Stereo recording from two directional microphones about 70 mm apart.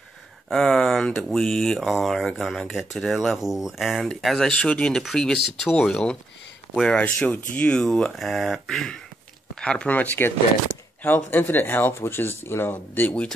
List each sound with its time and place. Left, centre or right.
0.5 s speech: centre
4.5 s speech: centre